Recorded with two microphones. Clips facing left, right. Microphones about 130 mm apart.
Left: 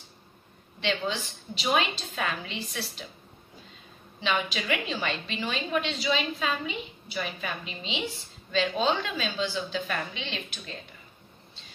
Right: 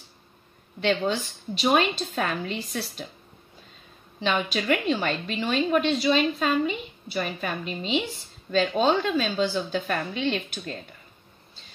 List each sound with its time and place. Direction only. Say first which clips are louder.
0.7 s a woman's voice: right 5 dB; 45° right (ahead or behind)
4.2 s a woman's voice: right 3 dB; 40° right (ahead or behind)